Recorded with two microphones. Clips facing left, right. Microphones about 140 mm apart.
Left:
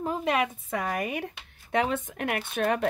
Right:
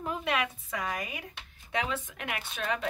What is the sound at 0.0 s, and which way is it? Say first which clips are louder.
Speech: left 5 dB; 40° left (ahead or behind).